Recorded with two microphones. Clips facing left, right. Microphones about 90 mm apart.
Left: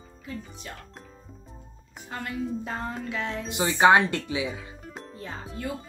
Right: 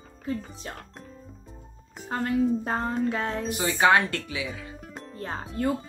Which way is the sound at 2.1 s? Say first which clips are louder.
Right 7 dB; 40° right (ahead or behind).